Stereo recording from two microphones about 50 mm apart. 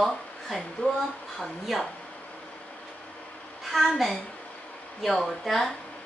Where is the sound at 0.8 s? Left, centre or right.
Left.